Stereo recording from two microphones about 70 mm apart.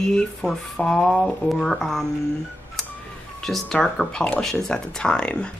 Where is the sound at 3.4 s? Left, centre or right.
Centre.